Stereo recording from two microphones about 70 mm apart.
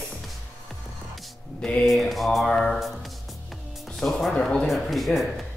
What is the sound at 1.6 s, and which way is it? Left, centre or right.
Speech, centre.